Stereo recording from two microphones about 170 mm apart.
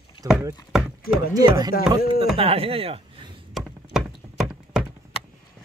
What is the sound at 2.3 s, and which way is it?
Speech, 35° right (ahead or behind).